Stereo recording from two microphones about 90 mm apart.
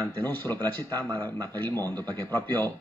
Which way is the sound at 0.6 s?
50° right (ahead or behind).